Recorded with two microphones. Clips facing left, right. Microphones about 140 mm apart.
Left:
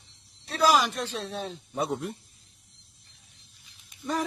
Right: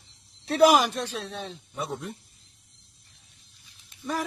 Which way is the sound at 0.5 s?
55° right (ahead or behind).